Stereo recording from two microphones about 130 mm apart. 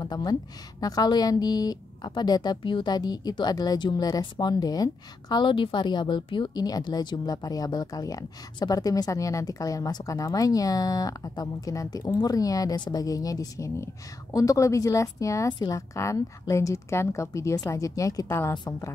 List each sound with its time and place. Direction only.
0.0 s speech: 30° left (ahead or behind)
18.5 s a woman's voice: 30° left (ahead or behind)